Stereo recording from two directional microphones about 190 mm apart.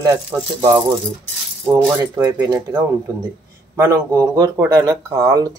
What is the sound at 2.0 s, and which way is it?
Speech, 15° right (ahead or behind).